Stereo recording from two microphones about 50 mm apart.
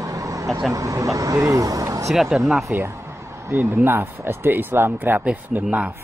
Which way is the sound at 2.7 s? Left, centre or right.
Right.